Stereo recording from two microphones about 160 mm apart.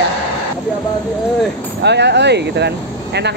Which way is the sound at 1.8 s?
90° right.